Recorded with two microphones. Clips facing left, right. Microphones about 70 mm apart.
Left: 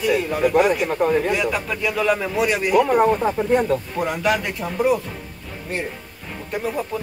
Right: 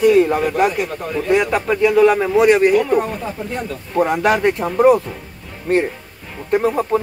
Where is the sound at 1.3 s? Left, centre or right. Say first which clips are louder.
Right 6 dB; right.